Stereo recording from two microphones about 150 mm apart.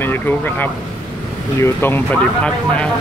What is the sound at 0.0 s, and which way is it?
Speech, 15° left (ahead or behind).